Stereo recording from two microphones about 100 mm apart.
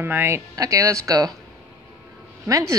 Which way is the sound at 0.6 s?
35° right (ahead or behind).